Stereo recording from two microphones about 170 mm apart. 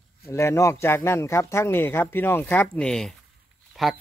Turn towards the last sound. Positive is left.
turn(degrees=0)  # may be behind; listen again after turning